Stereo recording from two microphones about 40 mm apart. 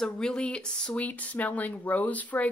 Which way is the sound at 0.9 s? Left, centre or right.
Left.